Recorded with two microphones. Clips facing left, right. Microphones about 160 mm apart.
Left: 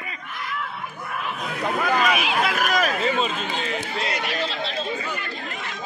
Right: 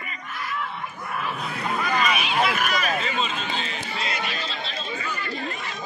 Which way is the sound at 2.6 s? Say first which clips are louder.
Left 3 dB; 45° left (ahead or behind).